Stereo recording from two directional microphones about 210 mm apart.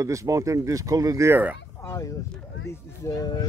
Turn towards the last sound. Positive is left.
turn(degrees=20)  # may be behind; listen again after turning